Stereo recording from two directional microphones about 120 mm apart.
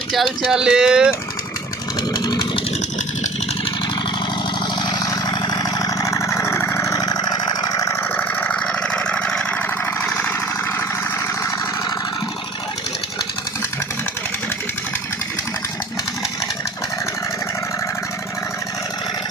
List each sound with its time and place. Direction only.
0.1 s speech: centre (ahead or behind)
2.1 s vehicle: 35° left (ahead or behind)
4.9 s vehicle: 30° left (ahead or behind)
8.2 s a sound: 10° left (ahead or behind)
10.0 s lawn mower: 15° left (ahead or behind)